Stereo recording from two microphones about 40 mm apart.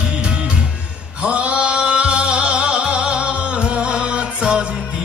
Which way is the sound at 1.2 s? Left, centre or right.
Right.